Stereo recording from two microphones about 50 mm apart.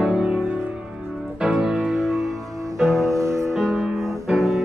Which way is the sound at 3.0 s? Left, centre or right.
Right.